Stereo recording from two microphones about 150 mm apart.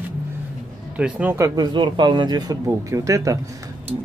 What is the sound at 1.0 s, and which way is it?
Speech, 10° right (ahead or behind).